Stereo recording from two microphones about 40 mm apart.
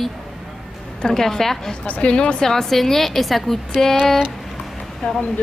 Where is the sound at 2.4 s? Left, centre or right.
Centre.